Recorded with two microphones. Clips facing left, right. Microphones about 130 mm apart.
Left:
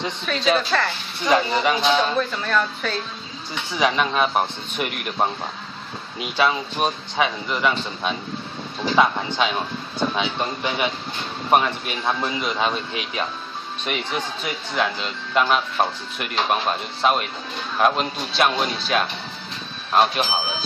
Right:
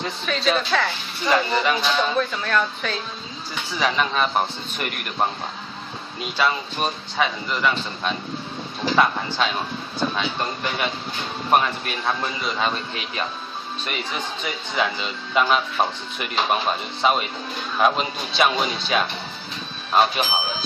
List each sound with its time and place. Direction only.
0.2 s speech: centre (ahead or behind)
1.6 s speech: 15° left (ahead or behind)
1.9 s speech: centre (ahead or behind)
6.4 s speech: 5° left (ahead or behind)